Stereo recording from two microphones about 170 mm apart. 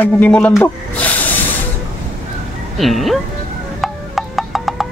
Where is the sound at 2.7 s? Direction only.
Centre (ahead or behind).